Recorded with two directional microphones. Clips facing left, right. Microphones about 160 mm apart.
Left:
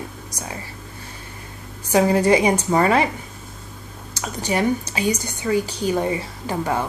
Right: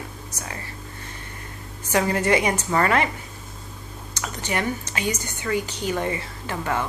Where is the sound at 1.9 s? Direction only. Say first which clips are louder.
Left 5 dB; 10° left (ahead or behind).